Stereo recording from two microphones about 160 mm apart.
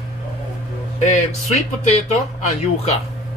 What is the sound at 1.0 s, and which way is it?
Speech, 45° left (ahead or behind).